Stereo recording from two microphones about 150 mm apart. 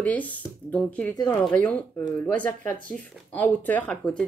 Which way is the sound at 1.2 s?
25° left (ahead or behind).